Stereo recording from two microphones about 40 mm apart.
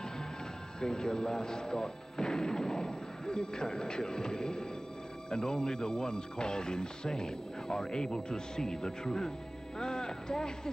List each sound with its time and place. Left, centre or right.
0.7 s speech: centre